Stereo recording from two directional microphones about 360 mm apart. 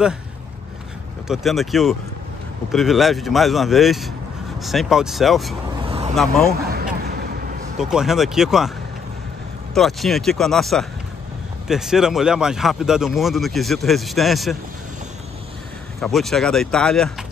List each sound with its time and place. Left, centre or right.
1.2 s speech: centre
5.9 s vehicle: centre
6.1 s speech: centre
6.5 s a sound: right
7.8 s speech: centre
9.8 s speech: centre
16.0 s speech: centre